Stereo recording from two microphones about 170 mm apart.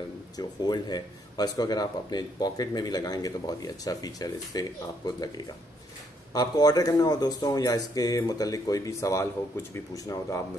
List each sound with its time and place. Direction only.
0.4 s speech: 25° left (ahead or behind)